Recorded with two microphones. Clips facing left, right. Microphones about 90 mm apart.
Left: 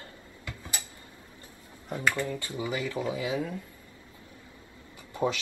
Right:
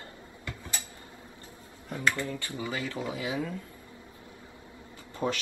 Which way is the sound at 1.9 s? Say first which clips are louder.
Left 1 dB; 20° left (ahead or behind).